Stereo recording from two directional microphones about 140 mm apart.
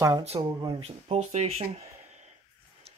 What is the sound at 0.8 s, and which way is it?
Speech, 50° right (ahead or behind).